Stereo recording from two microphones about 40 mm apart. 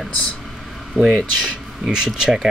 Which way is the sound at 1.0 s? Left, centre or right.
Centre.